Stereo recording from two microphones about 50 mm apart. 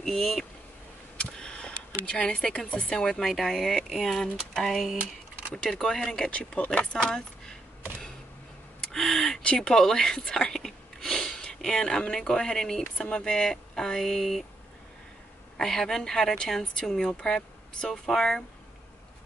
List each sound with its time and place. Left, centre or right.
0.0 s speech: centre
1.4 s a sound: centre
2.4 s speech: centre
5.5 s speech: centre
8.8 s gasp: centre
9.4 s speech: centre
12.9 s speech: centre
15.5 s speech: centre